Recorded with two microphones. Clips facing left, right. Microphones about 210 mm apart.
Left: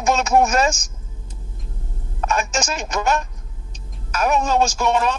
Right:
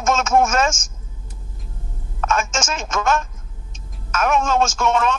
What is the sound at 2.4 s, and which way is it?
Speech, 35° left (ahead or behind).